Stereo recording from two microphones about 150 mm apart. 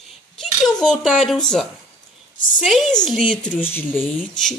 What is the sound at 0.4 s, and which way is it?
A child's voice, 5° left (ahead or behind).